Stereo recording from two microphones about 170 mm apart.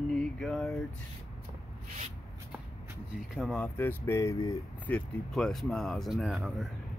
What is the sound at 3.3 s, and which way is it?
Speech, 5° left (ahead or behind).